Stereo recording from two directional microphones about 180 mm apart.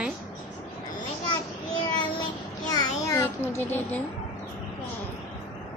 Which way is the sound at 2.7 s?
20° left (ahead or behind).